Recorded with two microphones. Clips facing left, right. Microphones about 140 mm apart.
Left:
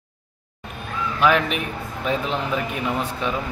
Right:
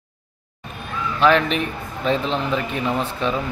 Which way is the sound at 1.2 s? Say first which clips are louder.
Right 3 dB; 10° left (ahead or behind).